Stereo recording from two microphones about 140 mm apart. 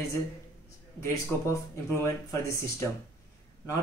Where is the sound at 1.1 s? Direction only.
20° left (ahead or behind).